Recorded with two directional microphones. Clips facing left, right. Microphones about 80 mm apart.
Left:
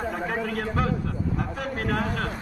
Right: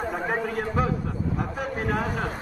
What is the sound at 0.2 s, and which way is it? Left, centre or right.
A man's voice, centre.